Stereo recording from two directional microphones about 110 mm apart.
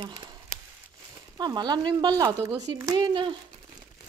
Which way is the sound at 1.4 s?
40° right (ahead or behind).